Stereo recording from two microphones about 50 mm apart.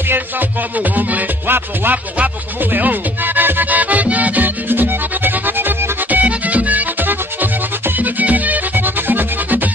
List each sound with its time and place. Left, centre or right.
0.1 s music: right